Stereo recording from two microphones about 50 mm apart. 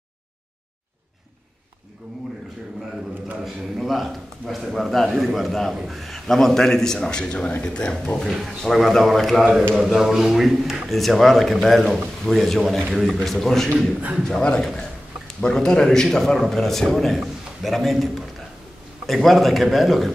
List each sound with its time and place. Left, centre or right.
3.4 s a man's voice: centre
8.5 s a man's voice: centre